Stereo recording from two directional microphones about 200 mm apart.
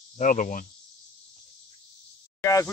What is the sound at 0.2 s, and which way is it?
Speech, 40° left (ahead or behind).